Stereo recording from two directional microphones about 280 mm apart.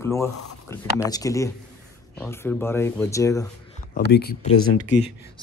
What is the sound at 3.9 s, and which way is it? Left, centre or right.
Speech, left.